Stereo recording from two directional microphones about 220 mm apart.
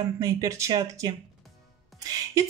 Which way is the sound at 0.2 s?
15° right (ahead or behind).